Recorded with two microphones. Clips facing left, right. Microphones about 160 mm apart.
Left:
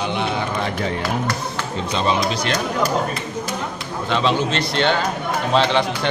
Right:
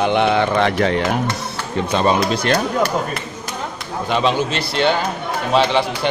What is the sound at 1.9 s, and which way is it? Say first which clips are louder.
Speech: right 4 dB; 50° right (ahead or behind).